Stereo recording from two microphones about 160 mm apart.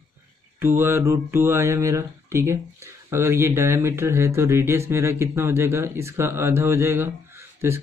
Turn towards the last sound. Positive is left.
turn(degrees=-15)  # may be behind; listen again after turning